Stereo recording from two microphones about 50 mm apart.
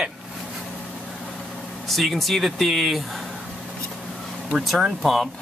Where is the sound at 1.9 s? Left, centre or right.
Centre.